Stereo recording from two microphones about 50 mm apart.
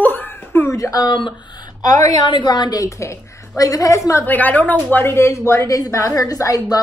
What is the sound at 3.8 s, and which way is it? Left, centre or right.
Speech, left.